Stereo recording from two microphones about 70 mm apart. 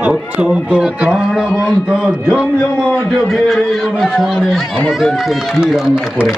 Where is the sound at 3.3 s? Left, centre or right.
Centre.